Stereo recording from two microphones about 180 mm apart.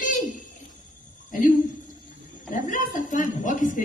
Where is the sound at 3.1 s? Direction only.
45° left (ahead or behind).